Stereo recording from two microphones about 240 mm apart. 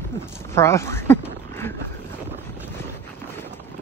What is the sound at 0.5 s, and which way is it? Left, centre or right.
Speech, centre.